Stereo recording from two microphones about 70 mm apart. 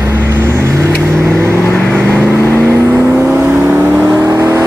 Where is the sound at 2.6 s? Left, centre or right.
Right.